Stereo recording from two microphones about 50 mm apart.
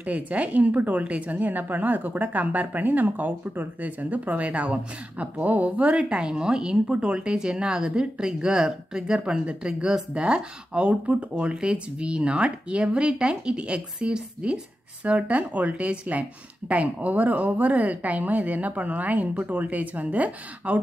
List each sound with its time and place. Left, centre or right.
0.0 s a woman's voice: right